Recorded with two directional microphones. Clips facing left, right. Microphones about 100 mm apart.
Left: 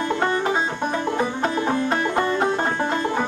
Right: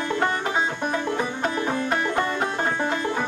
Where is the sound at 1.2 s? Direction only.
25° left (ahead or behind).